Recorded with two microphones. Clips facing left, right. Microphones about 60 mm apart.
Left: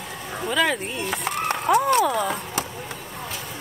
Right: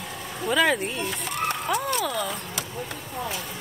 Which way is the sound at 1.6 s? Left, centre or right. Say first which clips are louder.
Left 12 dB; centre.